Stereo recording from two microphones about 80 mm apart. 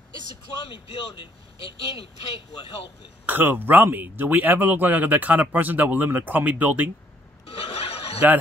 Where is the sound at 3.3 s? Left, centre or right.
Right.